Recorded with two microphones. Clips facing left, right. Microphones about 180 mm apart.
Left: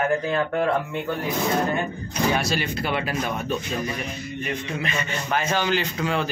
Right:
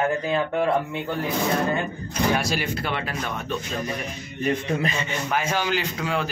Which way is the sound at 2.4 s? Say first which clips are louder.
Left 1 dB; 10° right (ahead or behind).